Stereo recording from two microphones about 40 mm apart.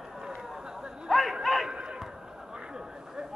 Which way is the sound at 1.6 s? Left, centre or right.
Right.